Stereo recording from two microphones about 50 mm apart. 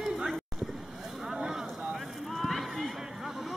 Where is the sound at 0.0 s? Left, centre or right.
Centre.